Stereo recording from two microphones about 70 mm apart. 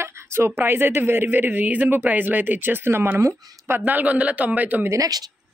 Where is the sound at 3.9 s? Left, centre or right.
Right.